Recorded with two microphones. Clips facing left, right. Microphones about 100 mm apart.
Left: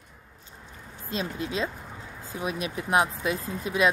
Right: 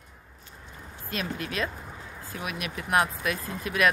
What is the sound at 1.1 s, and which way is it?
Speech, 20° left (ahead or behind).